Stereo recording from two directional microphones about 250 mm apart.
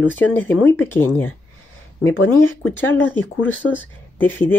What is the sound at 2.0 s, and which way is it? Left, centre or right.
Speech, left.